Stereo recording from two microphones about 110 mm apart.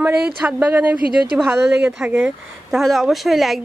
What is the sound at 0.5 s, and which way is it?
Speech, 20° right (ahead or behind).